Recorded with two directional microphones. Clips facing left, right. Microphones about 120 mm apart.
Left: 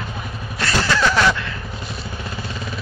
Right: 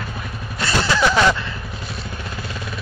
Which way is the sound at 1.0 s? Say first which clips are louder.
Right 2 dB; 20° right (ahead or behind).